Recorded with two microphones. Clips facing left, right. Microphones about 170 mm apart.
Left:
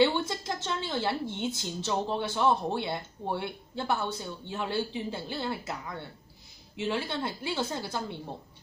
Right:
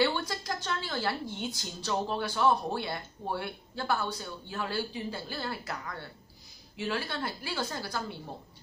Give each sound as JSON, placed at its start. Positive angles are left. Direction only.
{"t": 0.0, "sound": "a woman's voice", "side_deg": 20}